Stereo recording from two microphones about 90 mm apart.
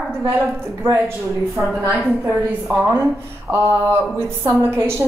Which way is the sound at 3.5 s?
25° right (ahead or behind).